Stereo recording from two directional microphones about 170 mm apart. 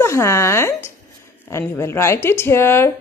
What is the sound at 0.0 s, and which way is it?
A woman's voice, 15° left (ahead or behind).